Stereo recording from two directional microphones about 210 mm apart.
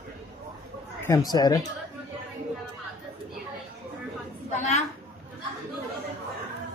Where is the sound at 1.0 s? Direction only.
15° left (ahead or behind).